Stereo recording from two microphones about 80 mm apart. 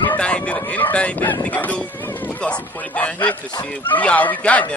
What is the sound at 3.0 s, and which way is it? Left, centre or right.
Speech, left.